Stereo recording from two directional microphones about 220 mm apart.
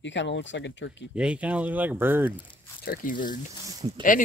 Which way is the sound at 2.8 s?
40° left (ahead or behind).